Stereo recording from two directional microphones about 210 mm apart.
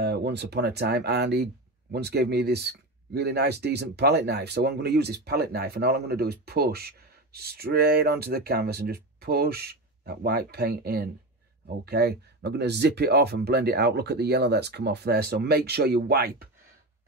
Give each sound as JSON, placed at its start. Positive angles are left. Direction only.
{"t": 0.0, "sound": "speech", "side_deg": -50}